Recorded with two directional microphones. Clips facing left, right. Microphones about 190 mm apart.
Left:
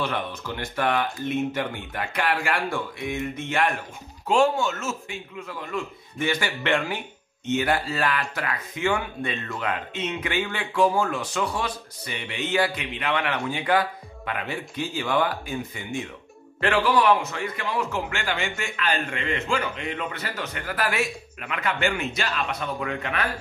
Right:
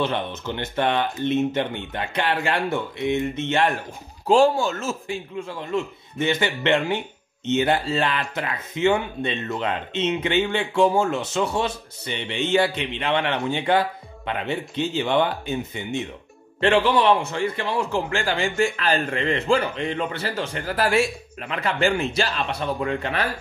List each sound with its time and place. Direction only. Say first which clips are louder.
0.0 s a man's voice: right 4 dB; 25° right (ahead or behind)